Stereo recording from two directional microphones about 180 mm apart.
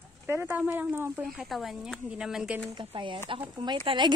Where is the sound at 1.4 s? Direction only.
Centre (ahead or behind).